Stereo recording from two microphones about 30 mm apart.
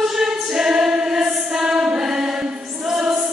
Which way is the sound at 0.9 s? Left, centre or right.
Centre.